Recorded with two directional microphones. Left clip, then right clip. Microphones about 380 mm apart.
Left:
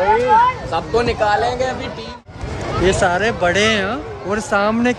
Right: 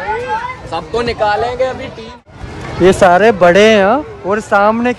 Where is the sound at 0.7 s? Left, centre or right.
Right.